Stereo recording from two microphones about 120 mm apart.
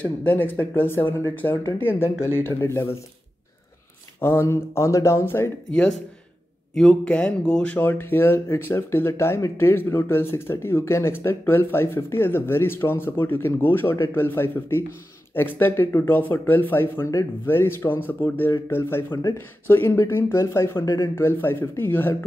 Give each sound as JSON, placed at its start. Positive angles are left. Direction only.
{"t": 0.0, "sound": "speech", "side_deg": 15}
{"t": 4.2, "sound": "speech", "side_deg": 20}
{"t": 5.7, "sound": "speech", "side_deg": 5}